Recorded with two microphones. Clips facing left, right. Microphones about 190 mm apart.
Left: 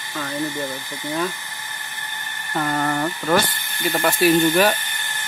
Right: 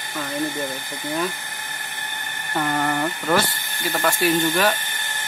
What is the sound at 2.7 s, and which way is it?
Speech, centre (ahead or behind).